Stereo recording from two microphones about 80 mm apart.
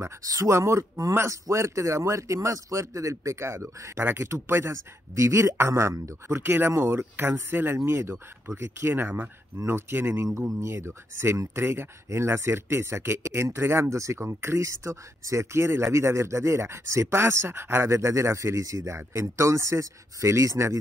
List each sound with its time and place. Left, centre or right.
0.0 s speech: right